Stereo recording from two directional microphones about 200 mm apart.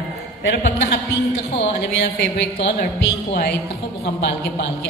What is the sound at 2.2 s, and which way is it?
Speech, 65° left (ahead or behind).